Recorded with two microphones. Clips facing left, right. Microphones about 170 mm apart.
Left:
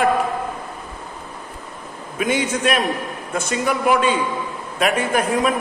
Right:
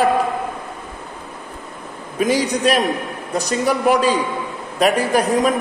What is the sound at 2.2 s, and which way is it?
A man's voice, 35° right (ahead or behind).